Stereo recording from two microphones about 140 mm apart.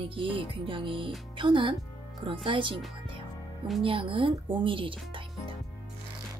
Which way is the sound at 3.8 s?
40° right (ahead or behind).